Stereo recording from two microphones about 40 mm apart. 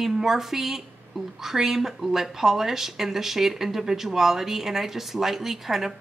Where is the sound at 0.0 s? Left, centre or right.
Centre.